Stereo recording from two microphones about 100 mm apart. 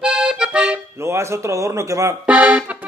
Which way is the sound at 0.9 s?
30° right (ahead or behind).